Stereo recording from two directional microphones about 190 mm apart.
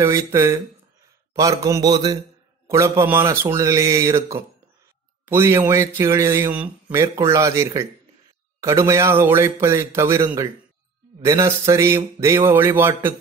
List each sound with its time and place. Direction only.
0.0 s a man's voice: 15° right (ahead or behind)